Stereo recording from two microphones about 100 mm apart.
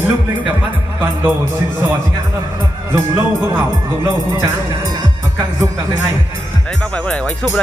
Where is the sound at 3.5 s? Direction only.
30° right (ahead or behind).